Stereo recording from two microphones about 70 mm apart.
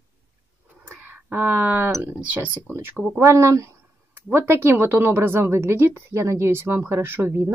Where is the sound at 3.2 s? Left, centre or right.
Right.